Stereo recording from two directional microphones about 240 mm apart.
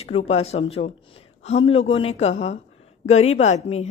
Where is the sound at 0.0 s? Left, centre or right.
Left.